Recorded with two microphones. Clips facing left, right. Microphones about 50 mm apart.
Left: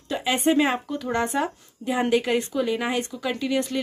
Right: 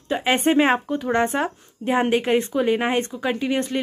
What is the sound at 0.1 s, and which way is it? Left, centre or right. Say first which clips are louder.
Speech: right 3 dB; right.